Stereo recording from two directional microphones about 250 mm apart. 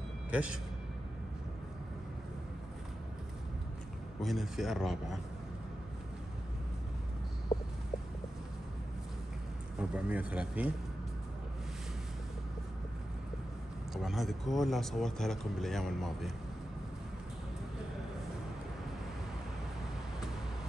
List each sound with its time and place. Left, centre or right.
0.3 s speech: centre
4.2 s speech: centre
7.5 s a sound: left
9.8 s speech: centre
13.9 s speech: centre